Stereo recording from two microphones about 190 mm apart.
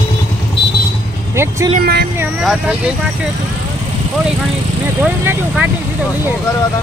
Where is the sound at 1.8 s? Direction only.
55° right (ahead or behind).